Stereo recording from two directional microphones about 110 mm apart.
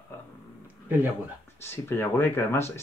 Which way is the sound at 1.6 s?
20° left (ahead or behind).